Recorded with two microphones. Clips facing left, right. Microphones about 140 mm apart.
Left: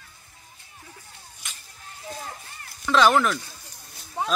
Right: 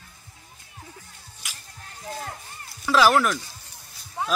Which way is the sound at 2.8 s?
5° right (ahead or behind).